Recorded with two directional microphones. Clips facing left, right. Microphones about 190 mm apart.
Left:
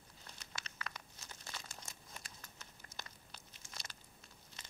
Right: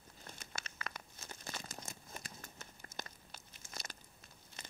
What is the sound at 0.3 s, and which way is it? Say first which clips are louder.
Crumpling: right 3 dB; 50° right (ahead or behind).